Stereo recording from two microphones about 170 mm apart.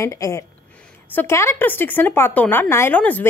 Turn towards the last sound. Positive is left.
turn(degrees=10)  # may be behind; listen again after turning